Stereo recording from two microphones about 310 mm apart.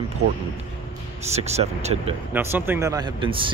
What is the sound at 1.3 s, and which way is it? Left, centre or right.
Speech, right.